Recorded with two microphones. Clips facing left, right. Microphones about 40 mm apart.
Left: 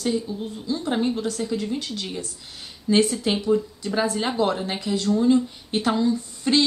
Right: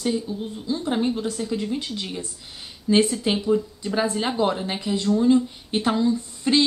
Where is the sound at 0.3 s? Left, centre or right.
Centre.